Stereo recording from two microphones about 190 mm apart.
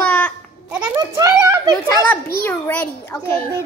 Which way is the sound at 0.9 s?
15° right (ahead or behind).